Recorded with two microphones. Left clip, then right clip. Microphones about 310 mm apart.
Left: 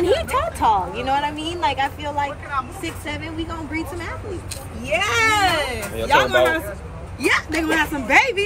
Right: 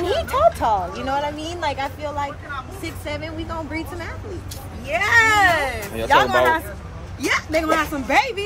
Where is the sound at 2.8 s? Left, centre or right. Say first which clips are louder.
Even; centre.